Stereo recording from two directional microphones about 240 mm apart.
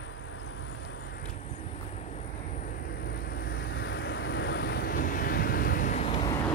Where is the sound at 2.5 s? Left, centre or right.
Left.